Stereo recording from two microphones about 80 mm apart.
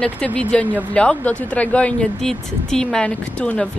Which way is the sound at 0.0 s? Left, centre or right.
Centre.